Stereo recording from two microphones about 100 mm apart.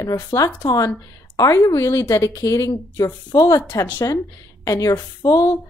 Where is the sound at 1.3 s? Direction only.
35° left (ahead or behind).